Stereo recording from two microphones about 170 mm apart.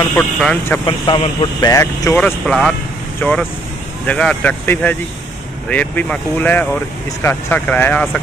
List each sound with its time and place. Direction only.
0.1 s speech: 5° left (ahead or behind)
0.8 s speech: 25° left (ahead or behind)
2.4 s speech: centre (ahead or behind)